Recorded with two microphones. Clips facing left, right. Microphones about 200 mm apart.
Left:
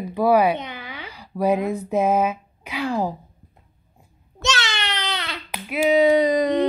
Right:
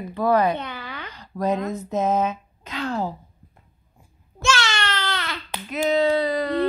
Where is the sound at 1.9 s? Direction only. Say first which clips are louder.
Left 2 dB; 10° left (ahead or behind).